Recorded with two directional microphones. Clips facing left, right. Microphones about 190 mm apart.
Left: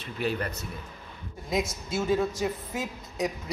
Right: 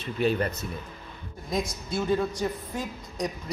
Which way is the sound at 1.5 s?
5° left (ahead or behind).